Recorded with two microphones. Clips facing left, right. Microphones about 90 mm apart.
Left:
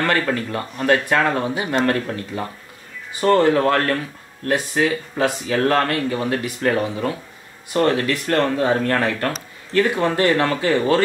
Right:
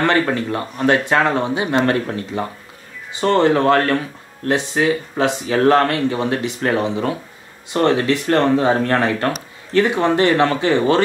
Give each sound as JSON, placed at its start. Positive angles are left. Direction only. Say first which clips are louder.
{"t": 0.0, "sound": "speech", "louder": "right 3 dB", "side_deg": -20}